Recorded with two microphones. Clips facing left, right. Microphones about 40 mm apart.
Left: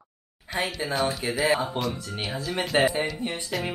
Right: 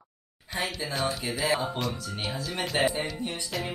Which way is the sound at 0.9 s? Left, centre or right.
Centre.